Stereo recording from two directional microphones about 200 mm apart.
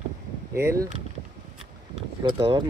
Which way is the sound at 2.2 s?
20° right (ahead or behind).